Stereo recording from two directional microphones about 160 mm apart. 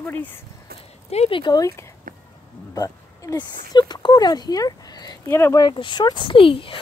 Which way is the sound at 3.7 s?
25° left (ahead or behind).